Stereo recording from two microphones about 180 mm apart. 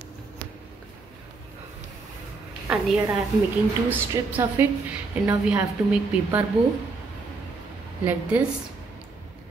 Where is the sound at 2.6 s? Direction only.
5° right (ahead or behind).